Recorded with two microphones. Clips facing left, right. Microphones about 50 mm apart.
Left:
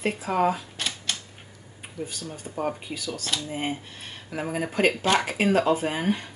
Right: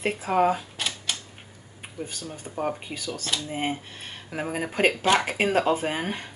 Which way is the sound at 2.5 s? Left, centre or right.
Centre.